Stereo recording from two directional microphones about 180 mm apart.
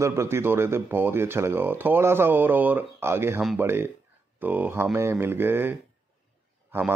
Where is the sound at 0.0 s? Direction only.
15° right (ahead or behind).